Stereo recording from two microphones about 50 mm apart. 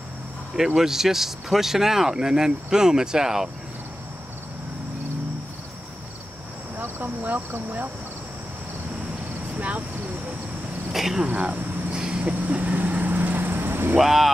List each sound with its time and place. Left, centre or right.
0.7 s speech: centre
6.8 s speech: right
9.6 s cricket: right
10.9 s speech: centre
11.2 s vehicle: right
12.4 s vehicle: right
13.9 s speech: centre